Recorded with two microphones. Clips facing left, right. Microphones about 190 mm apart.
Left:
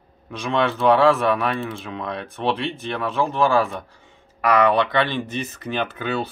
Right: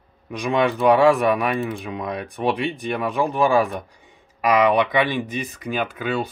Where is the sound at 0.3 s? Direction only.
15° right (ahead or behind).